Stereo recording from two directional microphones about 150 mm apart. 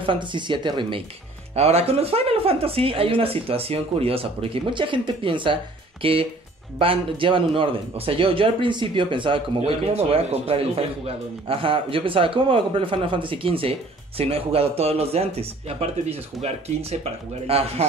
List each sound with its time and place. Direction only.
0.0 s a man's voice: 35° right (ahead or behind)
1.5 s a man's voice: 45° right (ahead or behind)
9.6 s a man's voice: 45° right (ahead or behind)